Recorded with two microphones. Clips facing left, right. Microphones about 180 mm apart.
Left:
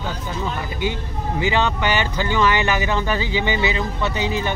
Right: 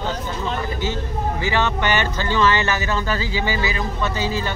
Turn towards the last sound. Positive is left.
turn(degrees=20)  # may be behind; listen again after turning